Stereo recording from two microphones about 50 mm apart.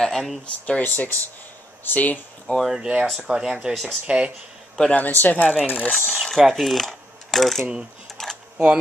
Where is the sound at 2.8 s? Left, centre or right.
Centre.